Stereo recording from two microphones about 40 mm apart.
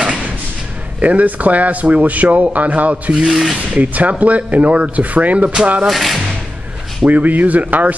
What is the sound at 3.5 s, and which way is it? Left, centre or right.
Speech, right.